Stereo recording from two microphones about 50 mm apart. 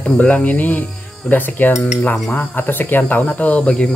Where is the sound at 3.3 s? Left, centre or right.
Left.